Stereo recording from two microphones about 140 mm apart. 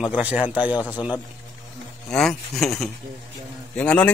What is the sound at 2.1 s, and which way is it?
A man's voice, centre (ahead or behind).